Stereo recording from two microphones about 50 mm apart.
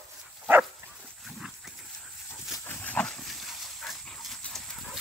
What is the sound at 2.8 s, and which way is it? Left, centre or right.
Dog, left.